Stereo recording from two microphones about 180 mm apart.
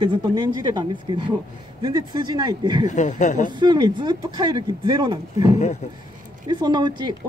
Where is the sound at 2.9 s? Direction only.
45° left (ahead or behind).